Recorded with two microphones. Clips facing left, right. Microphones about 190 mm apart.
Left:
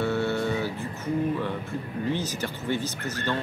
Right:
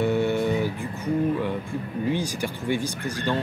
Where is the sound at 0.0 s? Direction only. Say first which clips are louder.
Right 3 dB; 15° right (ahead or behind).